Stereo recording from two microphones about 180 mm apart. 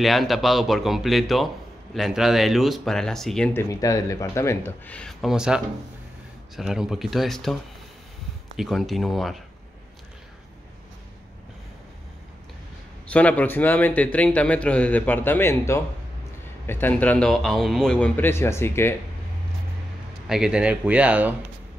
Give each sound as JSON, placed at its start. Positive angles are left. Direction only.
{"t": 0.0, "sound": "speech", "side_deg": 0}
{"t": 3.6, "sound": "a man's voice", "side_deg": 20}
{"t": 8.5, "sound": "speech", "side_deg": 0}
{"t": 13.1, "sound": "a man's voice", "side_deg": 10}
{"t": 20.2, "sound": "speech", "side_deg": -5}